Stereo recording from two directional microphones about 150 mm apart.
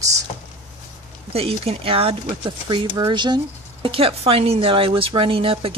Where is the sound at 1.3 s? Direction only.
40° right (ahead or behind).